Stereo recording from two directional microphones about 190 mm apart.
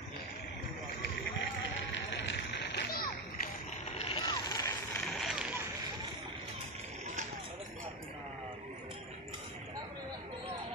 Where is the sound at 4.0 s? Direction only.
25° left (ahead or behind).